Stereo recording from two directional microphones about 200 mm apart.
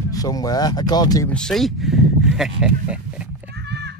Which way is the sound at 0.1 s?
20° left (ahead or behind).